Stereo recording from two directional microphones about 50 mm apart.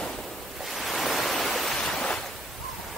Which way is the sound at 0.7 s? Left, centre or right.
Centre.